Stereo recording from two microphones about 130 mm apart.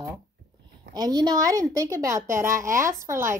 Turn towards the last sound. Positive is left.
turn(degrees=-20)  # may be behind; listen again after turning